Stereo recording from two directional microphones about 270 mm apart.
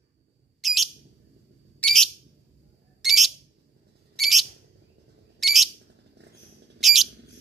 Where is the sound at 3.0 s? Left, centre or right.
Centre.